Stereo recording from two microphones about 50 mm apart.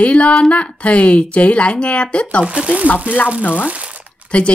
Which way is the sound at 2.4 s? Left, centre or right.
Right.